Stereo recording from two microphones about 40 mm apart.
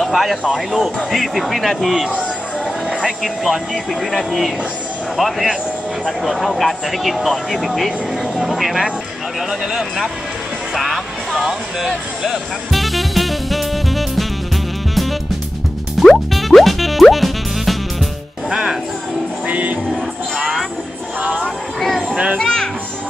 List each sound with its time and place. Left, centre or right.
0.1 s speech: centre
10.7 s music: centre
12.7 s music: centre
16.0 s music: centre
18.5 s speech: centre
19.4 s music: right
21.2 s a sound: right